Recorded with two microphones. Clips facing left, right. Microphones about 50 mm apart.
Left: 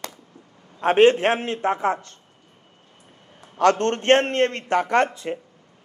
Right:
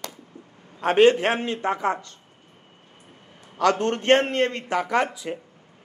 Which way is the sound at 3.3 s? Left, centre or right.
Left.